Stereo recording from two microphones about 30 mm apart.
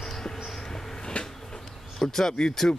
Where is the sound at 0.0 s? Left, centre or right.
Centre.